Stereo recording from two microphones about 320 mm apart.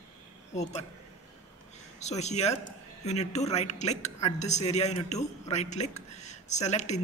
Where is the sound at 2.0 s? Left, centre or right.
Left.